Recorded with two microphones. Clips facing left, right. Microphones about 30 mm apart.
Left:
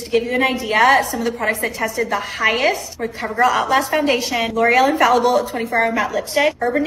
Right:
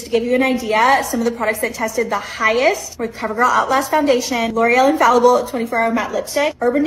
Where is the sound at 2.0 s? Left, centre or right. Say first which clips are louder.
Right 1 dB; centre.